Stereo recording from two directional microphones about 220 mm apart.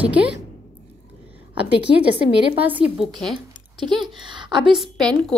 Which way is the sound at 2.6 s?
5° right (ahead or behind).